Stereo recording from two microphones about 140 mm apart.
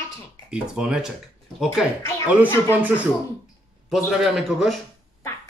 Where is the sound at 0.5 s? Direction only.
5° right (ahead or behind).